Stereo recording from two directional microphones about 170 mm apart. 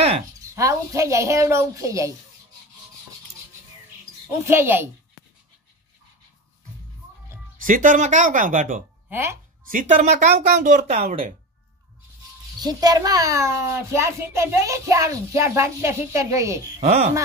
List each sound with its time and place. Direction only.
0.6 s a child's voice: 15° right (ahead or behind)
4.5 s a child's voice: 10° right (ahead or behind)
7.6 s speech: 50° right (ahead or behind)
9.1 s a child's voice: 15° right (ahead or behind)
9.7 s speech: 50° right (ahead or behind)
12.5 s a child's voice: 25° right (ahead or behind)
16.8 s speech: 40° right (ahead or behind)